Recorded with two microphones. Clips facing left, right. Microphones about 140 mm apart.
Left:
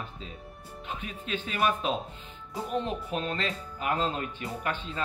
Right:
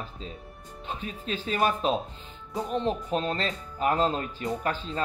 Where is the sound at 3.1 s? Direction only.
35° right (ahead or behind).